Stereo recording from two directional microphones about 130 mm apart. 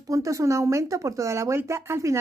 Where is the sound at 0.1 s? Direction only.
25° right (ahead or behind).